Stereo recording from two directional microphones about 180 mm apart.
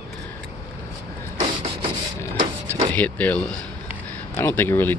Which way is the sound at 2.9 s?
10° left (ahead or behind).